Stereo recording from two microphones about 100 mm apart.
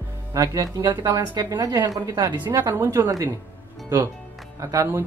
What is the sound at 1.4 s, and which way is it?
Speech, 40° right (ahead or behind).